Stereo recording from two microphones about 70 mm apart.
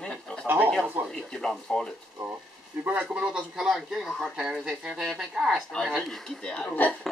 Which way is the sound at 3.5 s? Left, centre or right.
Centre.